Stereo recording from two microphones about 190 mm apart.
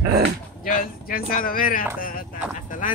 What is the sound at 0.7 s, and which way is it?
Speech, 50° left (ahead or behind).